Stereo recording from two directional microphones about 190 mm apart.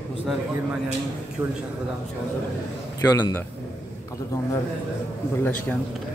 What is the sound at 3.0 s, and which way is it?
Speech, 15° left (ahead or behind).